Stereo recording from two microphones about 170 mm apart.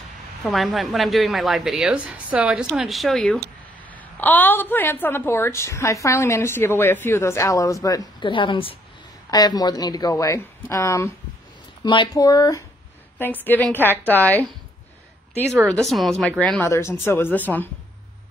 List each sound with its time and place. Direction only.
0.4 s a woman's voice: centre (ahead or behind); by 11.1 s 15° left (ahead or behind)
11.8 s speech: 25° left (ahead or behind)
13.2 s a woman's voice: 10° left (ahead or behind)
15.7 s a woman's voice: centre (ahead or behind)